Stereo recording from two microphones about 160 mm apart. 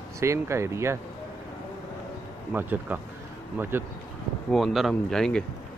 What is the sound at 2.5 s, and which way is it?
Speech, 10° right (ahead or behind).